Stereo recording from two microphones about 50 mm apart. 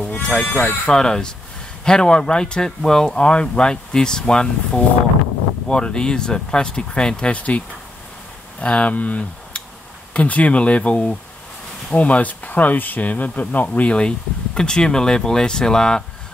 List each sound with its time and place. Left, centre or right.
0.5 s speech: left
0.8 s speech: centre
3.2 s speech: left
13.9 s speech: centre